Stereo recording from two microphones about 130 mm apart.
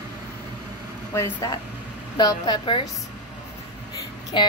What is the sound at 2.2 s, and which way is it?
Speech, 30° left (ahead or behind).